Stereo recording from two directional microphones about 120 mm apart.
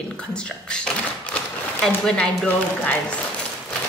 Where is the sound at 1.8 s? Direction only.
5° left (ahead or behind).